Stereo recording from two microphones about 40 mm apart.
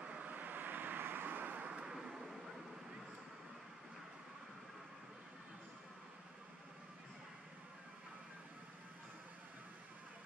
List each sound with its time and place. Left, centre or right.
0.0 s vehicle: right
0.3 s vehicle: right
1.7 s vehicle: right
2.0 s a sound: centre